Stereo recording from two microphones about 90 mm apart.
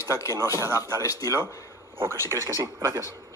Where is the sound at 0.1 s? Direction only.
35° left (ahead or behind).